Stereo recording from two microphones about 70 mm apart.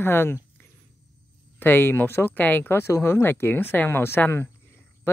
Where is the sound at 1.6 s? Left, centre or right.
Left.